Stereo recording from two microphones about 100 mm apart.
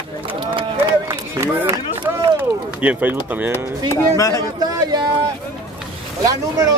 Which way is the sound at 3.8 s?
30° left (ahead or behind).